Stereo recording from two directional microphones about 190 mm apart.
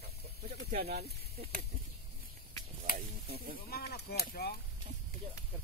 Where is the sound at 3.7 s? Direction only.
55° left (ahead or behind).